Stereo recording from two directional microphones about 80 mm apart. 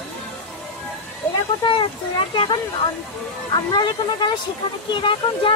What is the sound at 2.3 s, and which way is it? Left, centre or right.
Speech, left.